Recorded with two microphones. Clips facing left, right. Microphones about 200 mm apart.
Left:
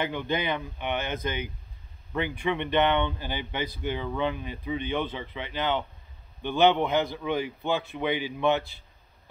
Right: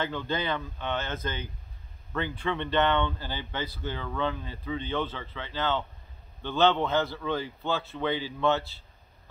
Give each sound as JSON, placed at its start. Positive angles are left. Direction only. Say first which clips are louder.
{"t": 0.0, "sound": "speech", "louder": "left 2 dB", "side_deg": 15}